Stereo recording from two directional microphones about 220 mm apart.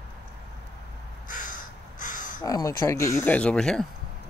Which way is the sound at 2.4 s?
15° left (ahead or behind).